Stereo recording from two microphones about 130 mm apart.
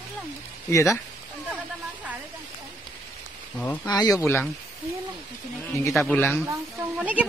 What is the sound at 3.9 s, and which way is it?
Speech, 30° left (ahead or behind).